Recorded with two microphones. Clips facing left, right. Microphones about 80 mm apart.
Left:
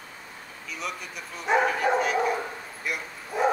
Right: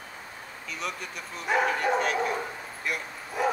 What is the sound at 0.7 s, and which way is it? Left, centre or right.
Speech, centre.